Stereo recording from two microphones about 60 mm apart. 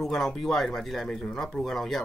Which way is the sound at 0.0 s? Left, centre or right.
Centre.